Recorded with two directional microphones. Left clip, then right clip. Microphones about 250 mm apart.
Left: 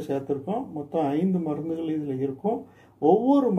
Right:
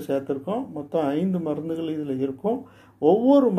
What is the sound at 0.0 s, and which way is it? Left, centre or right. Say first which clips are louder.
A man's voice: right 2 dB; right.